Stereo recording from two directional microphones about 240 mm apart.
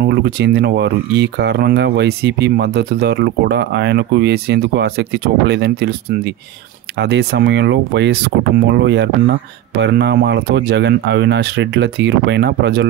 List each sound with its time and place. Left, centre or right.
0.0 s speech: right